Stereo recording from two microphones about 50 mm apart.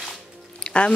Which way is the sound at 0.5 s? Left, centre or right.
Left.